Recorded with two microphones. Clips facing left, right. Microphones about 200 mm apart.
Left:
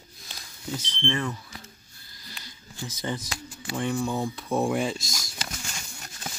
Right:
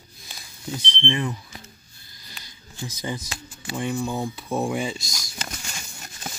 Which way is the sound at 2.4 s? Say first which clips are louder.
Right 2 dB; 10° right (ahead or behind).